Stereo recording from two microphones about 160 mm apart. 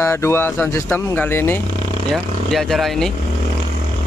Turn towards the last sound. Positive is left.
turn(degrees=0)  # may be behind; listen again after turning